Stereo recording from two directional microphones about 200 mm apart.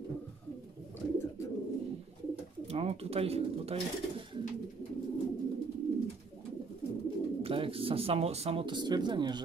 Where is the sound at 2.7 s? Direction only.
30° right (ahead or behind).